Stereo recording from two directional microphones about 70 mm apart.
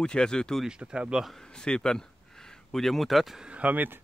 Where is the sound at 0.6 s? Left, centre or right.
Centre.